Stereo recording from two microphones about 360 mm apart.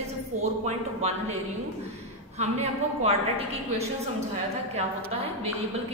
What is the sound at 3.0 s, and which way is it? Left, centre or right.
Speech, centre.